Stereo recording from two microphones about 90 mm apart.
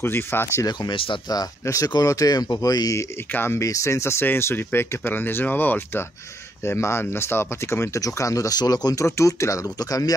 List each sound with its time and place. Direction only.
0.0 s speech: 25° left (ahead or behind)
0.7 s speech: 70° left (ahead or behind)
1.3 s speech: 40° left (ahead or behind)
3.3 s speech: 30° left (ahead or behind); by 9.0 s 45° left (ahead or behind)
9.0 s speech: 35° left (ahead or behind)